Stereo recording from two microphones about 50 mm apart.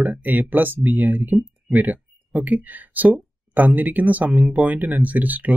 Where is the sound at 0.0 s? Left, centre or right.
Right.